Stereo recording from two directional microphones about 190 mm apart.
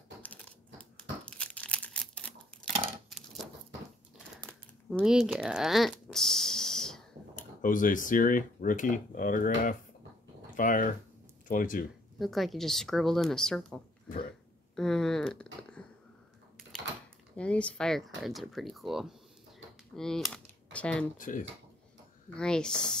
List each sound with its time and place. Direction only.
0.2 s crumpling: 10° left (ahead or behind)
4.5 s a sound: centre (ahead or behind)
7.3 s speech: 45° left (ahead or behind)
12.2 s speech: centre (ahead or behind)
14.8 s a sound: 5° left (ahead or behind)
17.4 s speech: 5° left (ahead or behind)
21.2 s speech: 45° left (ahead or behind)
22.4 s speech: 5° left (ahead or behind)